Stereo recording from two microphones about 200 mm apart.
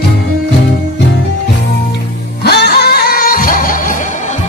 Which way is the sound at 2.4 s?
55° left (ahead or behind).